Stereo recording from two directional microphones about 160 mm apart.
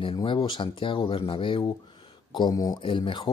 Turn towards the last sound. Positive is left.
turn(degrees=30)  # may be behind; listen again after turning